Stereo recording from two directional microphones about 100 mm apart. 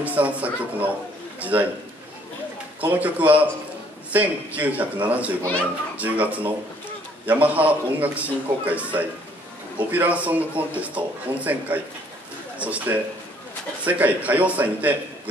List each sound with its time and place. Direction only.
0.0 s a man's voice: 15° right (ahead or behind)
2.8 s a man's voice: 15° right (ahead or behind)